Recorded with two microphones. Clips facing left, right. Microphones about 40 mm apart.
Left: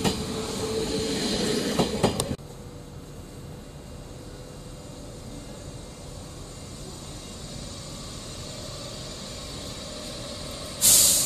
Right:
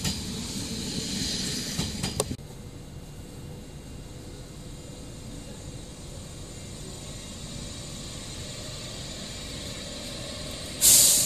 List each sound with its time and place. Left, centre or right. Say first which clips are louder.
0.0 s train: left 6 dB; left
9.9 s vehicle: left 1 dB; centre
10.8 s vehicle: even; centre